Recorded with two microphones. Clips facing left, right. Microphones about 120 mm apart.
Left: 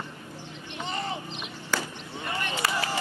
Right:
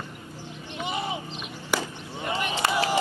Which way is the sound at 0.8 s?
10° right (ahead or behind).